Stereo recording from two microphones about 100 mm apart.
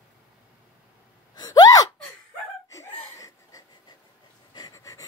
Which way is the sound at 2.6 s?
30° left (ahead or behind).